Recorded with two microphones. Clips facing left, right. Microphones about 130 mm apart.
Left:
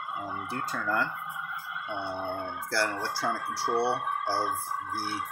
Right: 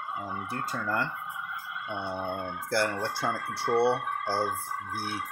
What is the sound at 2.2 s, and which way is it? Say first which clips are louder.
Speech: right 1 dB; 20° right (ahead or behind).